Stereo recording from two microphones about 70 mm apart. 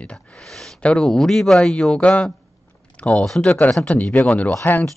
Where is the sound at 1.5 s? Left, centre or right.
Centre.